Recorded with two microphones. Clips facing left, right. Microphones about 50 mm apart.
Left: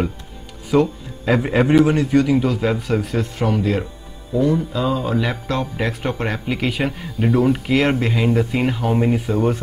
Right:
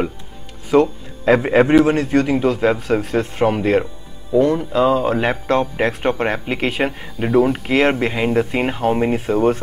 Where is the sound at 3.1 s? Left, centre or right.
Right.